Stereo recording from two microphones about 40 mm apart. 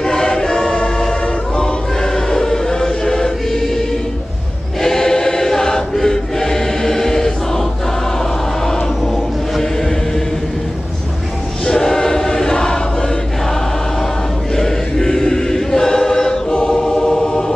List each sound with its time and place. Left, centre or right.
0.0 s choir: centre
4.8 s choir: centre
8.6 s chant: centre
11.6 s choir: centre
14.5 s choir: centre